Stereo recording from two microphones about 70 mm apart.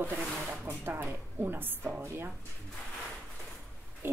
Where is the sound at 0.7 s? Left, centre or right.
Right.